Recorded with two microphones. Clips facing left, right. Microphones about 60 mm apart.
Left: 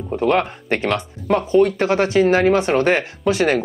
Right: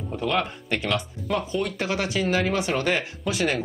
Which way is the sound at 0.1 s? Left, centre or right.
Left.